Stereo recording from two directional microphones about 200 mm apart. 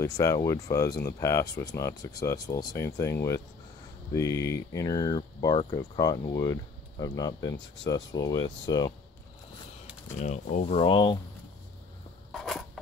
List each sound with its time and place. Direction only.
0.0 s speech: 15° left (ahead or behind)
10.1 s speech: 35° left (ahead or behind)
12.3 s a sound: centre (ahead or behind)